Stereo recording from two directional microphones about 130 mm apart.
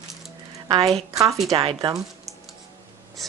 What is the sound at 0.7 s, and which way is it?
A woman's voice, 45° right (ahead or behind).